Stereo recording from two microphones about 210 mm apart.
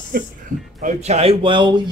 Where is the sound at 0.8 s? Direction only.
30° right (ahead or behind).